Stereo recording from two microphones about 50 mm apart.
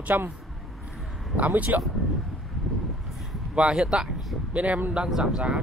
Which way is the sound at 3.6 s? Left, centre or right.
Centre.